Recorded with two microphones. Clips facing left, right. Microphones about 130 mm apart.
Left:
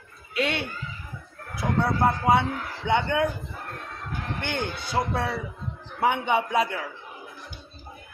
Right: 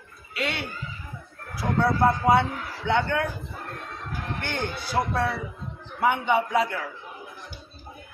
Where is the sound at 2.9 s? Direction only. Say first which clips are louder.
Left 1 dB; 20° left (ahead or behind).